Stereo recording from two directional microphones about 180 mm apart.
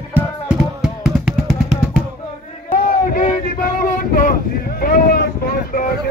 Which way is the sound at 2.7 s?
50° left (ahead or behind).